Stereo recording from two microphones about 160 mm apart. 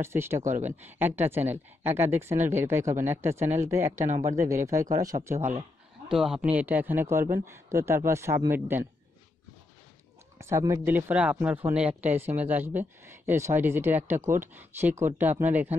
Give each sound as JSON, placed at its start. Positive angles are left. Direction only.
{"t": 0.0, "sound": "speech", "side_deg": -15}
{"t": 0.5, "sound": "speech", "side_deg": -50}
{"t": 0.8, "sound": "speech", "side_deg": -10}
{"t": 3.9, "sound": "speech", "side_deg": -50}
{"t": 4.4, "sound": "speech", "side_deg": -20}
{"t": 6.0, "sound": "speech", "side_deg": -5}
{"t": 10.4, "sound": "speech", "side_deg": -15}